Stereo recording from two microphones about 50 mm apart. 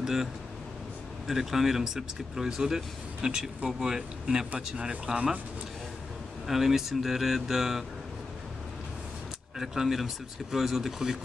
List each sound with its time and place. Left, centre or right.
0.0 s speech: centre
6.4 s speech: centre
9.6 s speech: centre